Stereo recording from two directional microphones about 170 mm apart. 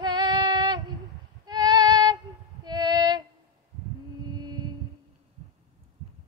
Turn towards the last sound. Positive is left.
turn(degrees=-25)  # may be behind; listen again after turning